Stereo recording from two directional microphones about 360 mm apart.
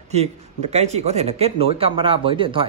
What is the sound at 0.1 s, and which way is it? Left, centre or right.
Speech, centre.